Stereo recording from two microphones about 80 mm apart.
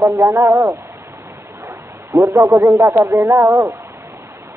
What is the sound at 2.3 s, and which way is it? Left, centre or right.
Speech, right.